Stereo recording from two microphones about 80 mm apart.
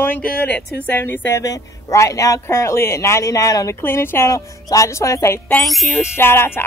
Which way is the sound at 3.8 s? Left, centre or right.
Left.